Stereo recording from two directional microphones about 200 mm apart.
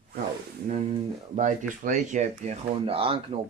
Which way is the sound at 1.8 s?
40° right (ahead or behind).